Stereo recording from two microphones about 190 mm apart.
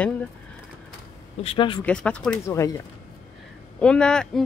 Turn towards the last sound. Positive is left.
turn(degrees=5)  # may be behind; listen again after turning